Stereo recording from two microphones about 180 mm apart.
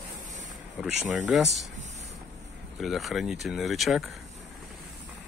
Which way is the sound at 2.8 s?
Centre (ahead or behind).